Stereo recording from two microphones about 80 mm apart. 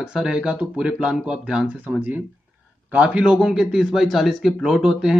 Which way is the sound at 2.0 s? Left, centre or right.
Right.